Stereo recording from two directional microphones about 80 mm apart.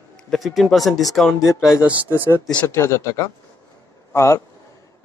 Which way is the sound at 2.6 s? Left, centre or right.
Left.